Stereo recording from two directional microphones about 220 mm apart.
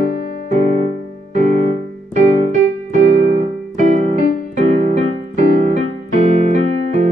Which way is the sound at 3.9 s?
35° right (ahead or behind).